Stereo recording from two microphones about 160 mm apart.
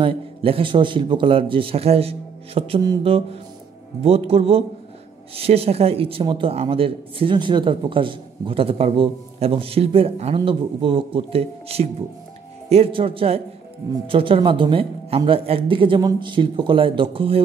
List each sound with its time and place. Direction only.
0.0 s a man's voice: 35° right (ahead or behind)